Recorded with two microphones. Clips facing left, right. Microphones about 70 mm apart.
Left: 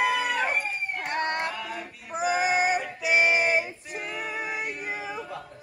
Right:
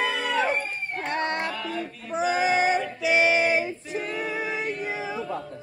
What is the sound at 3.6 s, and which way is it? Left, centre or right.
Female singing, centre.